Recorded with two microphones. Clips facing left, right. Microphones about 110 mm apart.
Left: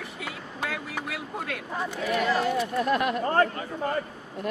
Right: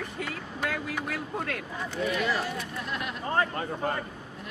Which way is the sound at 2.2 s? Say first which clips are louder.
Left 5 dB; 50° left (ahead or behind).